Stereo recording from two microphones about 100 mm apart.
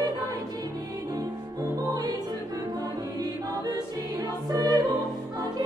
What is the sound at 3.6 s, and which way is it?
Music, 40° right (ahead or behind).